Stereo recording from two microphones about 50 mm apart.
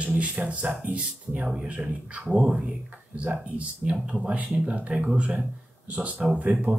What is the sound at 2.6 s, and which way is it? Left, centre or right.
Speech, right.